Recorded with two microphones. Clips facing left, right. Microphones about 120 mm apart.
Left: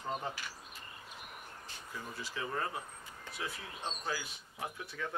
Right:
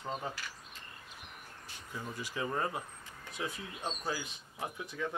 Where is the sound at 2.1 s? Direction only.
15° right (ahead or behind).